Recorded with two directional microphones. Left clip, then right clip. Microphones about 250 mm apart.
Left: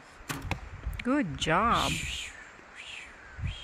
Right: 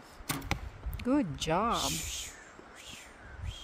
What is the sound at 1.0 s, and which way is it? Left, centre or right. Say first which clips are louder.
Speech: left 2 dB; centre.